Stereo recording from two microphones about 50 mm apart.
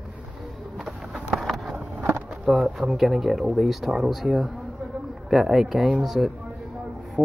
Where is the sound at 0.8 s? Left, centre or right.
Centre.